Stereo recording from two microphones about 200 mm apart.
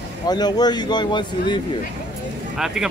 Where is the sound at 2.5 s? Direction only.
5° right (ahead or behind).